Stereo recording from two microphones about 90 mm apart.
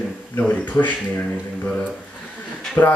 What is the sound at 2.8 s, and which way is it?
Speech, 25° left (ahead or behind).